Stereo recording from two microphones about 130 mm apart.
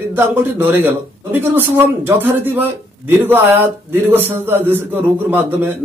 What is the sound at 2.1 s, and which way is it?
A man's voice, 15° right (ahead or behind).